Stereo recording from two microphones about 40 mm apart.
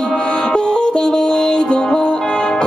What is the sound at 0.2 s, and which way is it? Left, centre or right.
Music, left.